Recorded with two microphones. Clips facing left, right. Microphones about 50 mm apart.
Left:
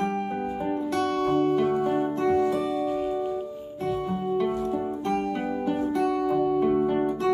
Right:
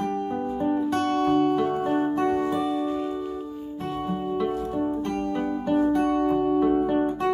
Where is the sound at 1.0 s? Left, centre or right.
Right.